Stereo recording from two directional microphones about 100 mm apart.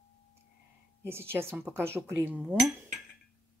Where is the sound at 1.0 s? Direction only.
25° right (ahead or behind).